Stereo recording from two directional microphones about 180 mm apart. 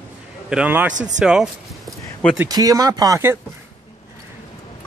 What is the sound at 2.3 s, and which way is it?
Speech, 20° right (ahead or behind).